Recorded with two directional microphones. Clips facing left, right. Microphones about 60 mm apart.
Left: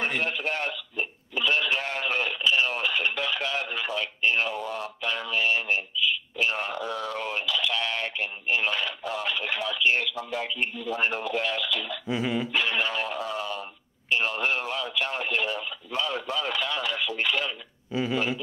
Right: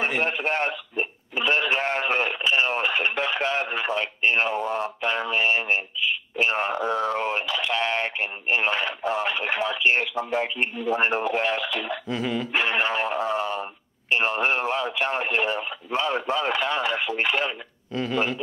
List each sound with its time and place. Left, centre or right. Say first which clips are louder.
0.2 s radio: right 4 dB; right
12.1 s dog: left 1 dB; centre
12.5 s a sound: right 6 dB; right
17.9 s dog: right 1 dB; centre